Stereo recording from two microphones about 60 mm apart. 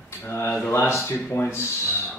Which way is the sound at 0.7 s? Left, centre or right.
Left.